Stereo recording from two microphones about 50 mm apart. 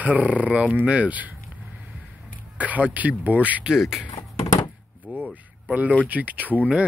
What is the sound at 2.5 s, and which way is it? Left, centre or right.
Speech, right.